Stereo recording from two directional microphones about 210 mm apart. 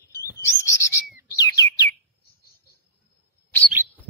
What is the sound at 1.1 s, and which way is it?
Bird, 45° left (ahead or behind).